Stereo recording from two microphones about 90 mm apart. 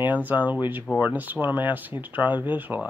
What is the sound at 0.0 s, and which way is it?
Speech, 20° right (ahead or behind).